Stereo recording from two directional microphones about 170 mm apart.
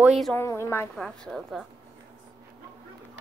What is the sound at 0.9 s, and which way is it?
Speech, 5° left (ahead or behind).